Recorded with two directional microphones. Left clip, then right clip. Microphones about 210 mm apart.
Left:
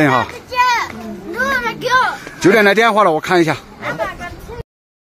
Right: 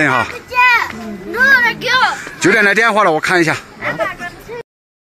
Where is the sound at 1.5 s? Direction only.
55° left (ahead or behind).